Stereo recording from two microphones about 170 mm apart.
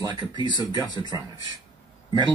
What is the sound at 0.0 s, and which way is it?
Speech, 25° right (ahead or behind).